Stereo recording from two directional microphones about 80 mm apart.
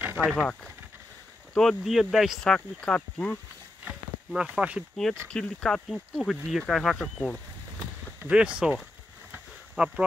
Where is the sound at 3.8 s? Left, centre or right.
Centre.